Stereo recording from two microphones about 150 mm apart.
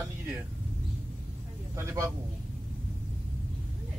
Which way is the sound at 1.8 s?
20° right (ahead or behind).